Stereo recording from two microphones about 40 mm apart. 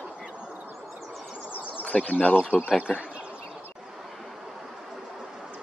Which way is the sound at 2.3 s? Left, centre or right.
Left.